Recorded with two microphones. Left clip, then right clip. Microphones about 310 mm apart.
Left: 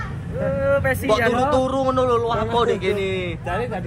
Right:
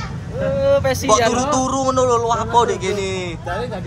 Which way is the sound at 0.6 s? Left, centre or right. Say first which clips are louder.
Right 4 dB; right.